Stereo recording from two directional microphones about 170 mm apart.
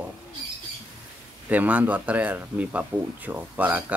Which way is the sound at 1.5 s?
10° right (ahead or behind).